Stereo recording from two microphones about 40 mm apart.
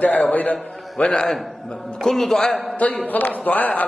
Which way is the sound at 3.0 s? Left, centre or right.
Left.